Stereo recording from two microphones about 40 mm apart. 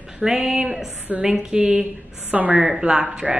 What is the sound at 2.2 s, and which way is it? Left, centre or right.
Speech, right.